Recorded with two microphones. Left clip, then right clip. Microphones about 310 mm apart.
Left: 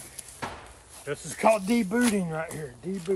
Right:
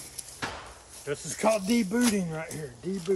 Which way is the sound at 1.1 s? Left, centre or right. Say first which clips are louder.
Left 3 dB; centre.